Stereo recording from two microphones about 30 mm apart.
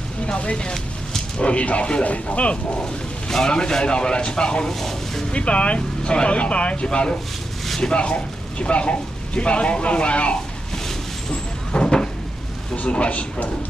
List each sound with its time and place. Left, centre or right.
0.3 s speech: left
2.0 s speech: left
3.3 s a man's voice: centre
3.5 s speech: left
4.6 s speech: centre
5.3 s speech: left
11.7 s vehicle: left
12.7 s speech: left